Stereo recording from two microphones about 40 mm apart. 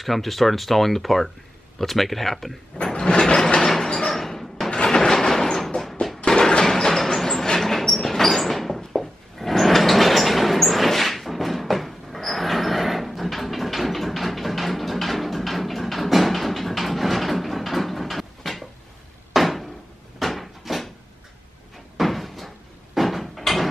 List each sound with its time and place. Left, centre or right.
0.0 s speech: centre
2.8 s sliding door: centre
4.1 s a sound: centre
4.6 s train: centre
6.2 s a sound: centre
6.6 s music: centre
19.3 s door: centre
20.2 s cupboard open or close: centre
21.9 s cupboard open or close: centre
22.9 s a sound: centre